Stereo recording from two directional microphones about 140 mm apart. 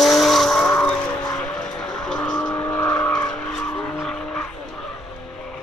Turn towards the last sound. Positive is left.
turn(degrees=5)  # may be behind; listen again after turning